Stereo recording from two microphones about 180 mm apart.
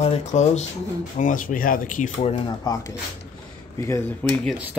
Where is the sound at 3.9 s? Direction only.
10° left (ahead or behind).